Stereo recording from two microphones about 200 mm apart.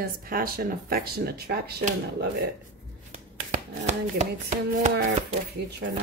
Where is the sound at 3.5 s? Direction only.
35° right (ahead or behind).